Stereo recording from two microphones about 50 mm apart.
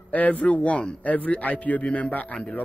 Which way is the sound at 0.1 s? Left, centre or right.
Left.